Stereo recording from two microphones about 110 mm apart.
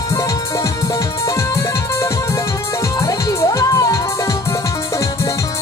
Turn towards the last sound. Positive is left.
turn(degrees=30)  # may be behind; listen again after turning